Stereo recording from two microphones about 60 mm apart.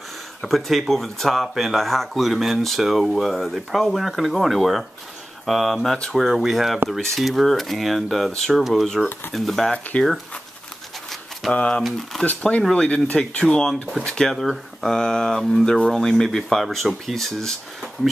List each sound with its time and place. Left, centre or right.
0.4 s speech: centre
11.5 s speech: centre
11.8 s speech: centre
12.3 s speech: left
14.3 s speech: centre